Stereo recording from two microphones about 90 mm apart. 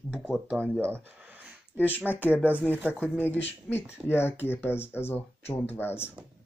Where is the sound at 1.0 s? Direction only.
20° right (ahead or behind).